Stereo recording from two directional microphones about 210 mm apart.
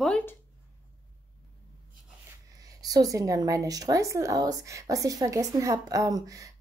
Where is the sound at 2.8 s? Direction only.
15° right (ahead or behind).